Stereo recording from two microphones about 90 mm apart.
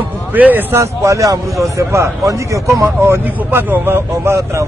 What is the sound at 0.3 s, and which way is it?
Speech, 20° right (ahead or behind).